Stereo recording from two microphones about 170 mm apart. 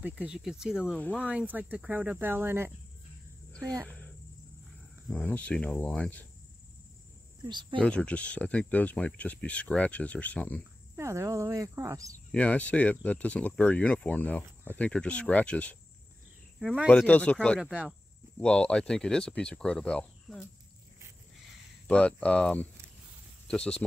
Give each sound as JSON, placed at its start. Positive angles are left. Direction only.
{"t": 0.0, "sound": "speech", "side_deg": -5}
{"t": 5.1, "sound": "speech", "side_deg": 10}
{"t": 7.4, "sound": "speech", "side_deg": -25}
{"t": 7.8, "sound": "speech", "side_deg": 5}
{"t": 11.0, "sound": "speech", "side_deg": -15}
{"t": 12.3, "sound": "speech", "side_deg": 10}
{"t": 16.5, "sound": "speech", "side_deg": -5}
{"t": 17.6, "sound": "speech", "side_deg": -5}
{"t": 18.4, "sound": "speech", "side_deg": 5}
{"t": 21.8, "sound": "speech", "side_deg": 5}